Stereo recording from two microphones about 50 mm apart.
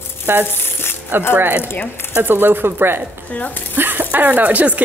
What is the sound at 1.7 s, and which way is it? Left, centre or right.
Speech, left.